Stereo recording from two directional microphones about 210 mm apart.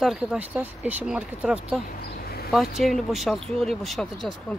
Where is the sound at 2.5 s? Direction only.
Centre (ahead or behind).